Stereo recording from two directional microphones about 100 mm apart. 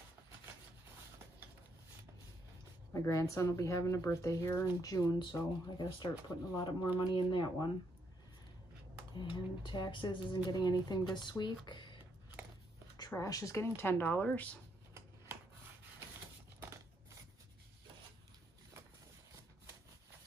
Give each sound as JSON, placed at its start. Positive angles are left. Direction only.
{"t": 2.9, "sound": "speech", "side_deg": 30}
{"t": 9.1, "sound": "speech", "side_deg": 55}
{"t": 13.1, "sound": "speech", "side_deg": 35}